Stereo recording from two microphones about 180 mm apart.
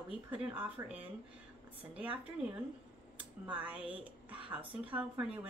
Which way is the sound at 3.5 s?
10° right (ahead or behind).